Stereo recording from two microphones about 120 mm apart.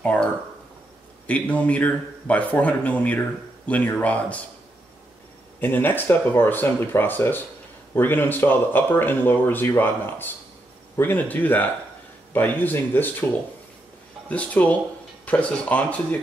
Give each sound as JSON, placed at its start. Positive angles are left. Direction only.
{"t": 0.0, "sound": "speech", "side_deg": 10}
{"t": 5.6, "sound": "speech", "side_deg": 15}
{"t": 14.3, "sound": "speech", "side_deg": 10}